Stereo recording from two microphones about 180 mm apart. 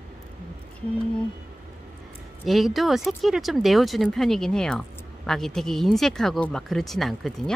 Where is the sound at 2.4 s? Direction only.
Centre (ahead or behind).